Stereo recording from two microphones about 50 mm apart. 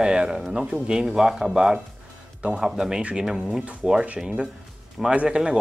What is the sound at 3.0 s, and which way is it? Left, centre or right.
Speech, right.